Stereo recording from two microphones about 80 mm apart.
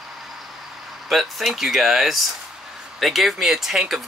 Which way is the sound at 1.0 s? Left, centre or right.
Centre.